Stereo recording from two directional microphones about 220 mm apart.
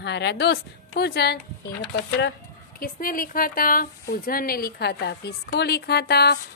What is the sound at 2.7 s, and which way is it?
A woman's voice, 40° left (ahead or behind).